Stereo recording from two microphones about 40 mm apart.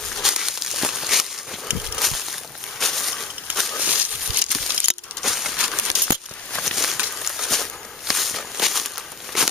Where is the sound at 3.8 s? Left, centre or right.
Right.